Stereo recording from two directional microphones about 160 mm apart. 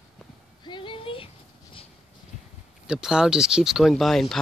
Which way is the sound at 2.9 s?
5° right (ahead or behind).